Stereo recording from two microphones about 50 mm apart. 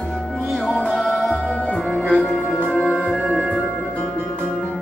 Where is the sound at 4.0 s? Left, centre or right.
Centre.